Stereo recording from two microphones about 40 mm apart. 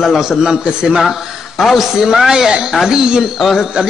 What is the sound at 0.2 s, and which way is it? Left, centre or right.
Speech, centre.